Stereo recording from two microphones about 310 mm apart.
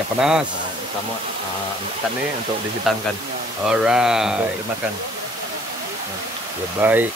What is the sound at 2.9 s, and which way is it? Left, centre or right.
Speech, centre.